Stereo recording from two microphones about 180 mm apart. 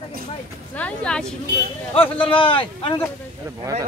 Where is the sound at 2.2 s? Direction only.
30° left (ahead or behind).